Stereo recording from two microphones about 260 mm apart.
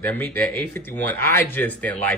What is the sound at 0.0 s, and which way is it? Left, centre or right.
Speech, centre.